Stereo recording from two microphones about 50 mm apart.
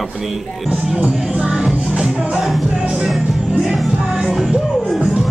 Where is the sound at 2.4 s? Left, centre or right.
Centre.